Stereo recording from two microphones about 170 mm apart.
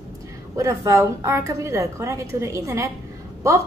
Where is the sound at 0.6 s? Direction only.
15° right (ahead or behind).